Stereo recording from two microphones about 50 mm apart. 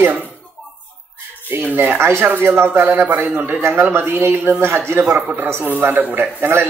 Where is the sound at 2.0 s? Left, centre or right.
Right.